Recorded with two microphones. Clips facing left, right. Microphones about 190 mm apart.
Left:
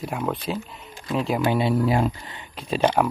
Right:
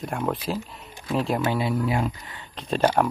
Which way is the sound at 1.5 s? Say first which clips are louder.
Left 3 dB; 25° left (ahead or behind).